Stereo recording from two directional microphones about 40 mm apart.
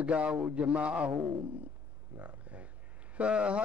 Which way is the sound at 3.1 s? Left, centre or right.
Right.